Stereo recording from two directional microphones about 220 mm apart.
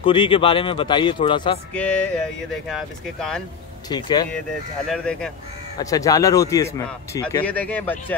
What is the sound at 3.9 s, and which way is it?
Speech, 20° left (ahead or behind).